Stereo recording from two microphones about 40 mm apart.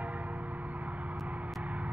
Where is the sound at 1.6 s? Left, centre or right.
Right.